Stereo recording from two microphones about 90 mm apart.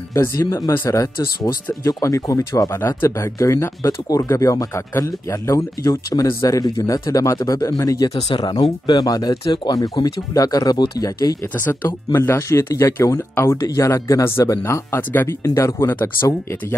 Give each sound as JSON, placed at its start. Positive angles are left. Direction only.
{"t": 0.1, "sound": "speech", "side_deg": 35}
{"t": 11.5, "sound": "speech", "side_deg": 25}
{"t": 15.4, "sound": "speech", "side_deg": 35}